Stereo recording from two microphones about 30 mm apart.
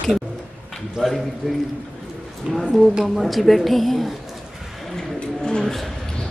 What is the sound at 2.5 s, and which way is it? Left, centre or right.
Speech, right.